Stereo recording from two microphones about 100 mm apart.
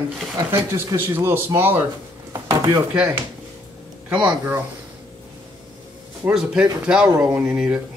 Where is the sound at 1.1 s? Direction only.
25° right (ahead or behind).